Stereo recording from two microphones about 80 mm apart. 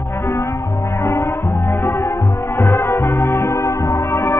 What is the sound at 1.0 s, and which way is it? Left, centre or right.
Music, left.